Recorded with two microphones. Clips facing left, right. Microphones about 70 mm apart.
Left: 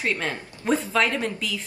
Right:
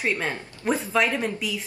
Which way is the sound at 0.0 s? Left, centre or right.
Centre.